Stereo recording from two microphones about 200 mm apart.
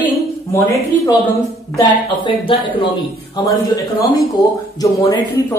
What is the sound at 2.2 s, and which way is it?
A man's voice, 25° left (ahead or behind).